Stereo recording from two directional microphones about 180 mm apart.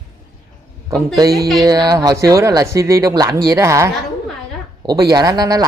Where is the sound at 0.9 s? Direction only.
20° right (ahead or behind).